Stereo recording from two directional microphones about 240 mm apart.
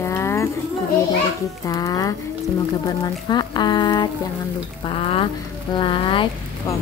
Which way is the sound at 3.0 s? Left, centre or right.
Centre.